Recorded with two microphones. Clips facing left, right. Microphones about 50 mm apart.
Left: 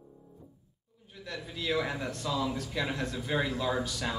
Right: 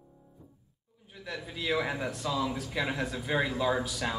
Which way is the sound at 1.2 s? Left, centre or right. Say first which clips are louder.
Right 1 dB; centre.